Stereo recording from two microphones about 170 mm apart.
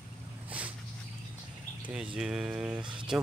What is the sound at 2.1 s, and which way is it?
Speech, 5° right (ahead or behind).